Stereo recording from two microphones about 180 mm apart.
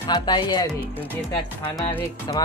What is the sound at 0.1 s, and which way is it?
Speech, 25° left (ahead or behind).